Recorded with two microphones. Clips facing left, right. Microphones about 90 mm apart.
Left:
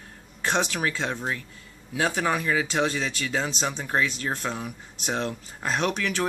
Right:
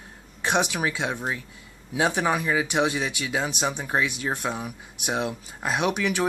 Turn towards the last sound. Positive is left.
turn(degrees=-15)  # may be behind; listen again after turning